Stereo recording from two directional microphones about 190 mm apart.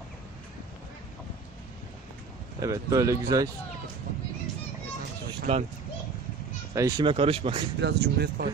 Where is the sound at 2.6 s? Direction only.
15° right (ahead or behind).